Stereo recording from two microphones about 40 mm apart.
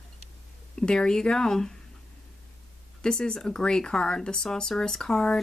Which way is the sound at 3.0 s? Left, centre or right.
Centre.